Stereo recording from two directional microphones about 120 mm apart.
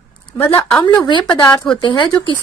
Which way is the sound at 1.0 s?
40° left (ahead or behind).